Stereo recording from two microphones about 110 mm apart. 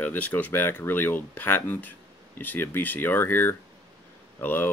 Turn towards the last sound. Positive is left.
turn(degrees=20)  # may be behind; listen again after turning